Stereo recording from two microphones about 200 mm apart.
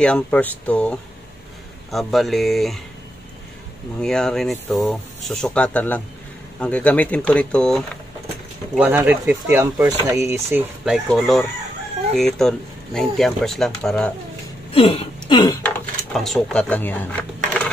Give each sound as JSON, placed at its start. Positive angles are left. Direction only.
{"t": 0.0, "sound": "speech", "side_deg": 5}
{"t": 4.0, "sound": "speech", "side_deg": 5}
{"t": 8.7, "sound": "speech", "side_deg": -10}
{"t": 11.1, "sound": "speech", "side_deg": 0}
{"t": 14.7, "sound": "speech", "side_deg": 30}
{"t": 15.6, "sound": "speech", "side_deg": 0}